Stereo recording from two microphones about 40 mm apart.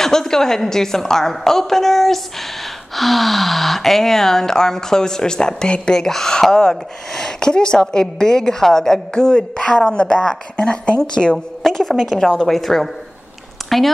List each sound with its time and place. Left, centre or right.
0.0 s speech: centre
9.1 s a woman's voice: centre
11.3 s a woman's voice: centre